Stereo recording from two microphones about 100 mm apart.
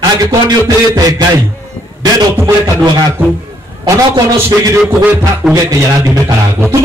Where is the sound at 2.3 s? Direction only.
25° right (ahead or behind).